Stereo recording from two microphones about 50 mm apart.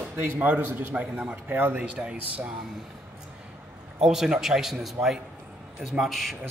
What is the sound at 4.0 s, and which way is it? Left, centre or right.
A man's voice, centre.